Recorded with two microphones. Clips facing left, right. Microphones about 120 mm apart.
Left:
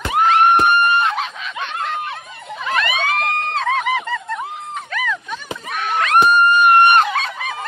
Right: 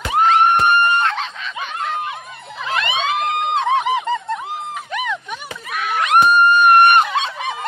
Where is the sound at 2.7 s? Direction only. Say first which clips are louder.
Even; 25° right (ahead or behind).